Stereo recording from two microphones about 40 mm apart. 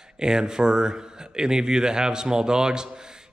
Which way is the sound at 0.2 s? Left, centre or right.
Centre.